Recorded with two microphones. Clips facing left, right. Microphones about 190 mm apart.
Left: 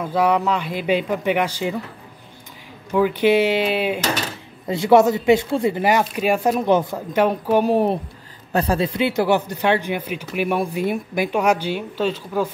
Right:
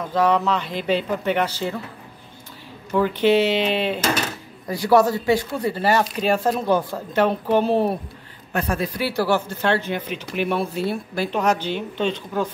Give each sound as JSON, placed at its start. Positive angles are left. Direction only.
{"t": 0.0, "sound": "speech", "side_deg": 10}
{"t": 2.9, "sound": "speech", "side_deg": 10}
{"t": 4.6, "sound": "speech", "side_deg": 25}
{"t": 8.5, "sound": "speech", "side_deg": 30}